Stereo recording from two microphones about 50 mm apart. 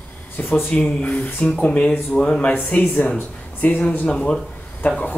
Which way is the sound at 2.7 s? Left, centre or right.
Left.